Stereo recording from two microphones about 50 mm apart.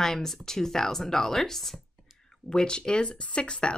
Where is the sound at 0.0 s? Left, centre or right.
Centre.